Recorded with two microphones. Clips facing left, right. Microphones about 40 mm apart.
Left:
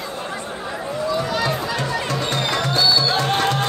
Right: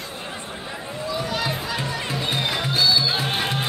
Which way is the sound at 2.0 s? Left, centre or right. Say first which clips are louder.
Left 3 dB; centre.